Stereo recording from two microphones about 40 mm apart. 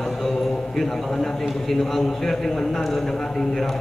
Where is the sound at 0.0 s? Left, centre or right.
Centre.